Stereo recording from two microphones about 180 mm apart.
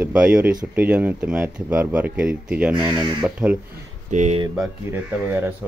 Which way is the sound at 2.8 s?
25° right (ahead or behind).